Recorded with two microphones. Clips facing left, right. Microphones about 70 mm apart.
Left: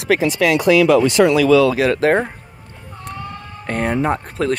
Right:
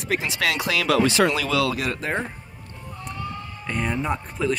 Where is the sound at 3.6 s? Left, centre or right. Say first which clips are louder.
Left 7 dB; left.